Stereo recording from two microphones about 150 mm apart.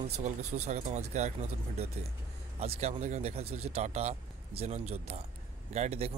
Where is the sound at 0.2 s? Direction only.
50° right (ahead or behind).